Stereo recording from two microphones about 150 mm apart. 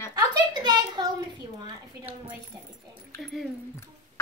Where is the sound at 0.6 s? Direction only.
30° right (ahead or behind).